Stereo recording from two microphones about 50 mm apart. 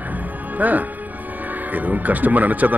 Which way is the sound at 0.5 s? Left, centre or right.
Right.